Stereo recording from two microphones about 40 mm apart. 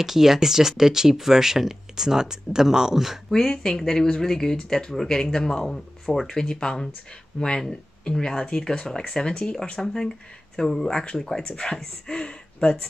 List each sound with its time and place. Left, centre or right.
0.0 s speech: centre
3.3 s speech: centre
9.3 s speech: left
9.8 s speech: centre